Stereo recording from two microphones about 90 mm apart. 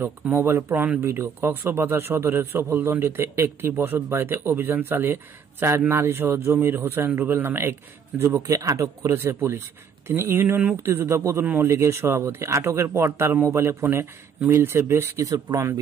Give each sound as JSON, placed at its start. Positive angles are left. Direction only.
{"t": 0.0, "sound": "a man's voice", "side_deg": -25}